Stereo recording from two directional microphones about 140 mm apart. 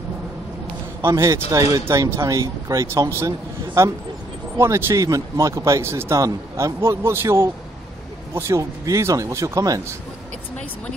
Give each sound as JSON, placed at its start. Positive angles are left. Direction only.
{"t": 1.0, "sound": "speech", "side_deg": -20}